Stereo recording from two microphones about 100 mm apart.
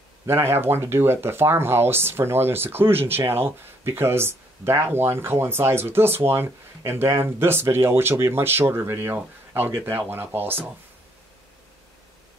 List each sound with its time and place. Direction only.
0.3 s speech: 25° right (ahead or behind)